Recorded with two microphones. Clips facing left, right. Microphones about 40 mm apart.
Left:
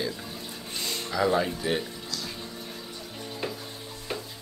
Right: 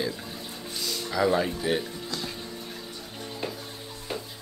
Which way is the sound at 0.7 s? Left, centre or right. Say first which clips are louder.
Even; left.